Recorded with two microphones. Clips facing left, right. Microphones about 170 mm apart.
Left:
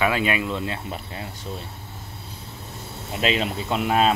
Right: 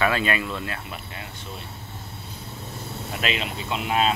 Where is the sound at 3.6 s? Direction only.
45° left (ahead or behind).